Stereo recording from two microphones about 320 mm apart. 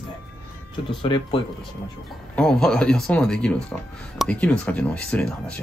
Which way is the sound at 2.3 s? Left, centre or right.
Centre.